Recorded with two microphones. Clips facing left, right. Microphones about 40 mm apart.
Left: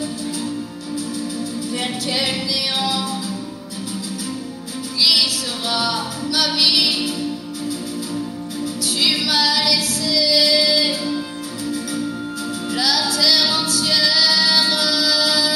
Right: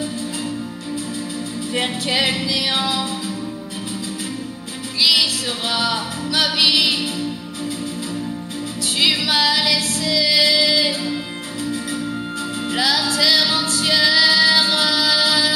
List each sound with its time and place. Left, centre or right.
1.7 s music: right
5.1 s music: right
9.0 s female singing: right
12.7 s music: right